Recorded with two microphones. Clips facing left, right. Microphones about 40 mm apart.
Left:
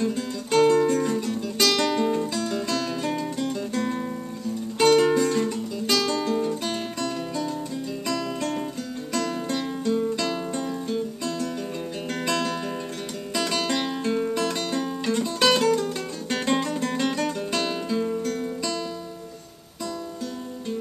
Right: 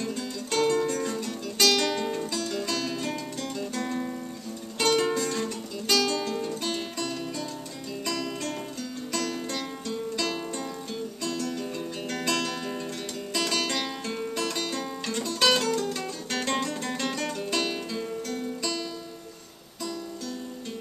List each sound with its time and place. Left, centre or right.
0.0 s guitar: centre
2.4 s music: centre
9.1 s music: centre